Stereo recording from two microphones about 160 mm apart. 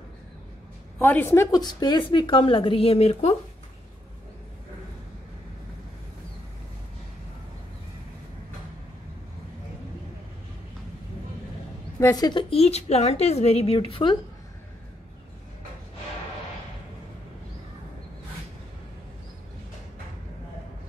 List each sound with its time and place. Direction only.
0.9 s a woman's voice: 10° left (ahead or behind); by 3.3 s 40° left (ahead or behind)
12.0 s a woman's voice: 20° left (ahead or behind)